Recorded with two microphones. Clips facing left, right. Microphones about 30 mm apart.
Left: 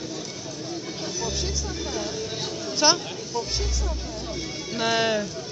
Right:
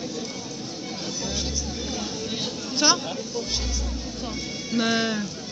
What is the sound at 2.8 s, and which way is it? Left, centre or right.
Speech, centre.